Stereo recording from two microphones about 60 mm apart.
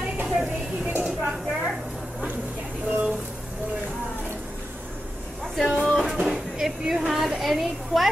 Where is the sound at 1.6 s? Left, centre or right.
Right.